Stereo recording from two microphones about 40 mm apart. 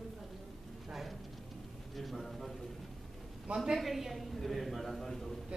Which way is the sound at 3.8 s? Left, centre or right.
Centre.